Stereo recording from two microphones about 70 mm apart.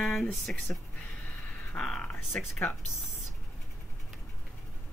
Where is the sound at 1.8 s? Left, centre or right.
Centre.